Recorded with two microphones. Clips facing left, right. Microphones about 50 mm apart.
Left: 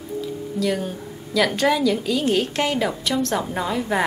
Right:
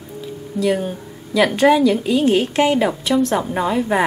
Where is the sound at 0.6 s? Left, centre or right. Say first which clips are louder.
Right 5 dB; centre.